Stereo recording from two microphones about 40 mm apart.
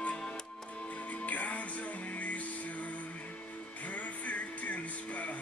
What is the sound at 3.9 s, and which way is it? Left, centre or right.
Music, left.